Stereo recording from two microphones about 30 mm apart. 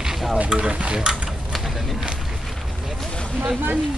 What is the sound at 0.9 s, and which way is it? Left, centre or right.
Speech, right.